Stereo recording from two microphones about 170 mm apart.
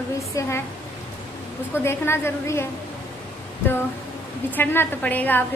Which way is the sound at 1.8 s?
15° left (ahead or behind).